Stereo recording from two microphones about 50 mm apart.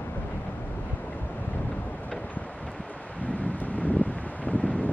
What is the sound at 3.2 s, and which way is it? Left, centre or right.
Wind, left.